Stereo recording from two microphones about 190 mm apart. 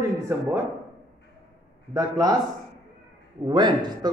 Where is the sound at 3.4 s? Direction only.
20° right (ahead or behind).